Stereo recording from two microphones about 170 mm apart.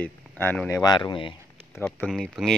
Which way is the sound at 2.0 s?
Centre (ahead or behind).